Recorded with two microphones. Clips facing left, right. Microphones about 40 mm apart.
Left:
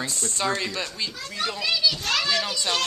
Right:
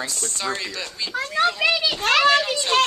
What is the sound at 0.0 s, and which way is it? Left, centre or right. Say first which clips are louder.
Speech: even; centre.